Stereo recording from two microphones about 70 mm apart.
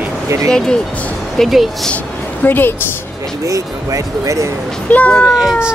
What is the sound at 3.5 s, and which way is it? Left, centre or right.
Speech, right.